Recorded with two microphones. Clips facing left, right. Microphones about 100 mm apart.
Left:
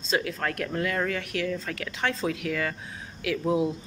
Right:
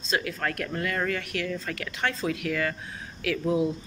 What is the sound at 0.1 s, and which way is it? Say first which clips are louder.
Speech: left 1 dB; 25° left (ahead or behind).